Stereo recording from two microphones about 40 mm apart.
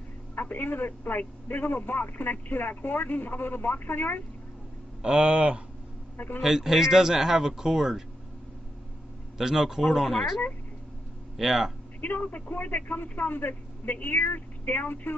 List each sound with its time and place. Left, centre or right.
0.4 s speech: left
5.0 s speech: right
6.1 s a man's voice: left
6.4 s speech: centre
9.4 s speech: centre
12.0 s speech: left